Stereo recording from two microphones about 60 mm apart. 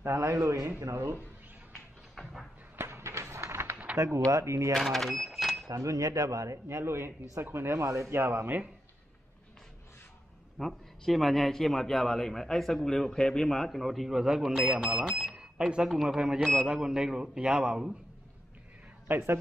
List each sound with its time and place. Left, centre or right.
0.0 s speech: right
2.7 s a sound: right
3.6 s a sound: right
4.3 s speech: right
4.7 s cash register: centre
5.7 s speech: right
10.6 s a man's voice: centre
19.0 s a man's voice: right